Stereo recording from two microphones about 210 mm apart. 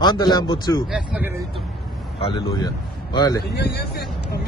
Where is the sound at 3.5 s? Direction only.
50° left (ahead or behind).